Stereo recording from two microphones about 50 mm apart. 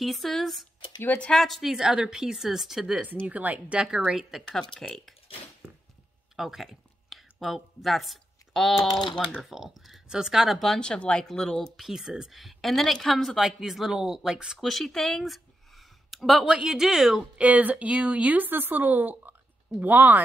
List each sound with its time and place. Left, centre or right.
0.0 s a woman's voice: centre
1.0 s speech: left
1.3 s a woman's voice: centre
3.3 s a woman's voice: right
3.8 s a woman's voice: centre
4.5 s speech: centre
6.3 s a woman's voice: centre
10.8 s speech: left
11.4 s speech: centre
11.7 s a woman's voice: centre
13.4 s a woman's voice: centre
14.6 s a woman's voice: centre
17.2 s speech: right